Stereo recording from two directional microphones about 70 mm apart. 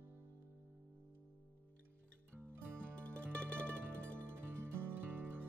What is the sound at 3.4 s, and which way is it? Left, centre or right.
Music, centre.